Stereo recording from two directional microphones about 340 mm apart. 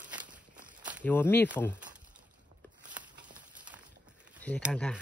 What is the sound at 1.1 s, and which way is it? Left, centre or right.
Speech, centre.